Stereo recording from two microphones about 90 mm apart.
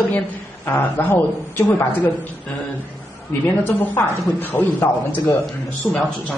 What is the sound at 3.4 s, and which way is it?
A man's voice, 20° left (ahead or behind).